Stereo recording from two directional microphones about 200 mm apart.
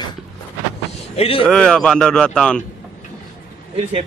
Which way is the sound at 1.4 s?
5° left (ahead or behind).